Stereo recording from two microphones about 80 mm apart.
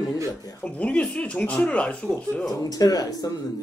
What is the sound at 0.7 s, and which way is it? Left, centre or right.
A man's voice, centre.